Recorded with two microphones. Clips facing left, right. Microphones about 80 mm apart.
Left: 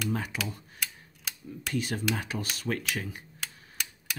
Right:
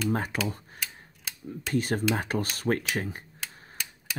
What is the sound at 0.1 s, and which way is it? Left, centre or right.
Speech, right.